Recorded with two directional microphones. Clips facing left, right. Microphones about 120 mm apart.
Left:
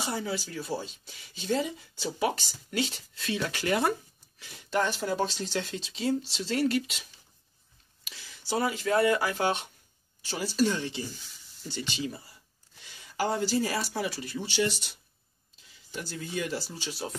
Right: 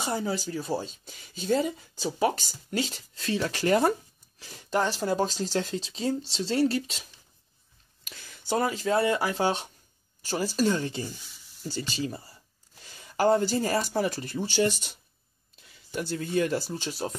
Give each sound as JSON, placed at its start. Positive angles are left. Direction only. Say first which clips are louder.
{"t": 0.0, "sound": "speech", "louder": "right 3 dB", "side_deg": -40}
{"t": 8.0, "sound": "a sound", "louder": "right 2 dB", "side_deg": -45}
{"t": 8.8, "sound": "speech", "louder": "left 3 dB", "side_deg": -25}
{"t": 10.2, "sound": "speech", "louder": "right 2 dB", "side_deg": -45}
{"t": 12.7, "sound": "a sound", "louder": "right 3 dB", "side_deg": -40}
{"t": 13.9, "sound": "speech", "louder": "right 5 dB", "side_deg": -45}